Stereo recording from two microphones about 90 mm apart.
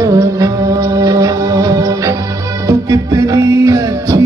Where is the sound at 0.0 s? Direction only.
40° right (ahead or behind).